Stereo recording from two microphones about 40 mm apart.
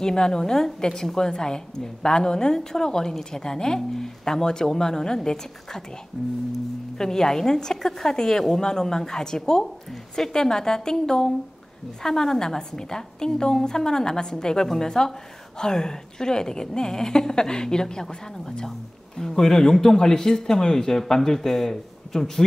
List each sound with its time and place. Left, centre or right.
0.0 s a woman's voice: centre
7.0 s a woman's voice: centre